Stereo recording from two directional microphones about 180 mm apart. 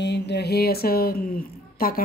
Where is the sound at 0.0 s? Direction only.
70° left (ahead or behind).